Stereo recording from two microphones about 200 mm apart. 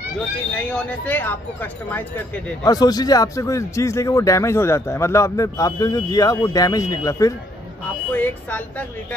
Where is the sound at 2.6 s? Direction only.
20° left (ahead or behind).